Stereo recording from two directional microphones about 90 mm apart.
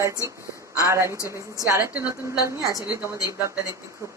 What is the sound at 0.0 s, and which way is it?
Speech, 35° right (ahead or behind).